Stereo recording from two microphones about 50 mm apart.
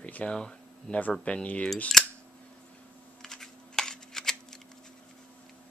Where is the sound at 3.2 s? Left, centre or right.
Centre.